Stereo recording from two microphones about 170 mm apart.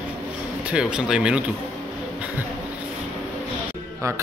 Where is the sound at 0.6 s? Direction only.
5° right (ahead or behind).